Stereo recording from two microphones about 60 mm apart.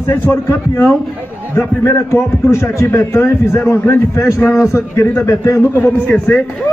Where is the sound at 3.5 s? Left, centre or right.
Left.